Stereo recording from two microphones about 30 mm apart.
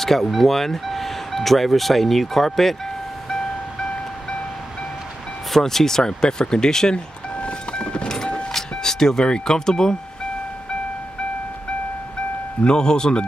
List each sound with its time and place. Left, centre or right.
0.0 s speech: centre
5.5 s speech: centre
7.3 s music: left
8.5 s music: centre
9.2 s speech: left
12.6 s speech: left